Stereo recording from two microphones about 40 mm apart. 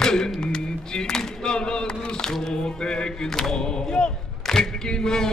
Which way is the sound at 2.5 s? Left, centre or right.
Centre.